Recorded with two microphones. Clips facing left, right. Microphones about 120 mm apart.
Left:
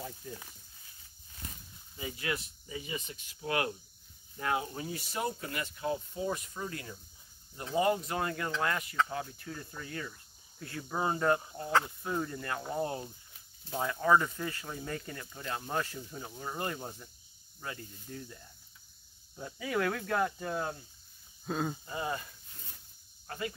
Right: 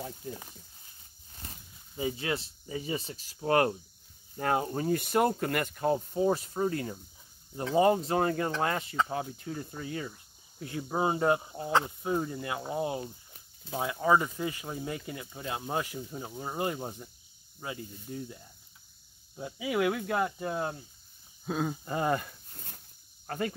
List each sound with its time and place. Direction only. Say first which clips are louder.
0.2 s speech: right 4 dB; 25° right (ahead or behind)
2.0 s speech: right 5 dB; 30° right (ahead or behind)
21.5 s speech: right 2 dB; centre (ahead or behind)
21.8 s a sound: right 7 dB; 60° right (ahead or behind)
23.2 s speech: right 5 dB; 55° right (ahead or behind)